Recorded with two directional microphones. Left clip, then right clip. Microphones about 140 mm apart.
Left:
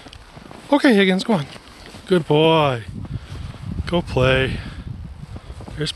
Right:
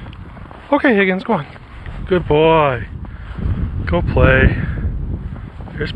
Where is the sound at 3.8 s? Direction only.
35° left (ahead or behind).